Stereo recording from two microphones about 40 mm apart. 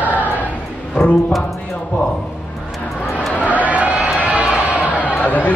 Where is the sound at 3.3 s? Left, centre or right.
Left.